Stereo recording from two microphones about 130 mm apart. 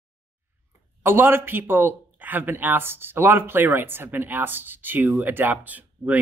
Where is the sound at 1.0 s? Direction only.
15° right (ahead or behind).